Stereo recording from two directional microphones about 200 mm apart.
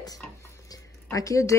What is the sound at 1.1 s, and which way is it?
Speech, 15° left (ahead or behind).